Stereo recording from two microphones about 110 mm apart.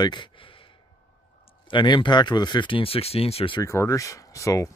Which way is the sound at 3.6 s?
30° left (ahead or behind).